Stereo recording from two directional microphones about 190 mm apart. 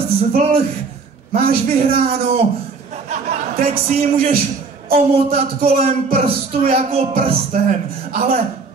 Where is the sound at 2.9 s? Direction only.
35° right (ahead or behind).